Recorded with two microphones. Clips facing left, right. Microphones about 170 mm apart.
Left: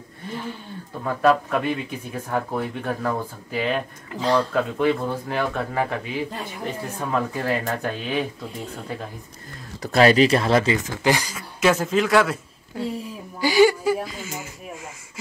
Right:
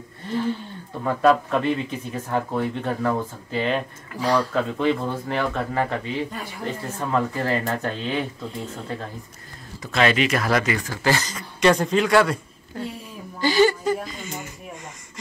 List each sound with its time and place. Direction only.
1.0 s speech: 5° left (ahead or behind)
4.2 s speech: 25° left (ahead or behind)
4.6 s speech: 10° left (ahead or behind)
6.3 s speech: 20° left (ahead or behind)
7.0 s speech: 10° left (ahead or behind)
9.8 s speech: 35° left (ahead or behind); by 14.8 s 5° left (ahead or behind)